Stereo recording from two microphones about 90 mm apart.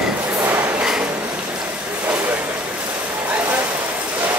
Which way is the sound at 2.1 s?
20° right (ahead or behind).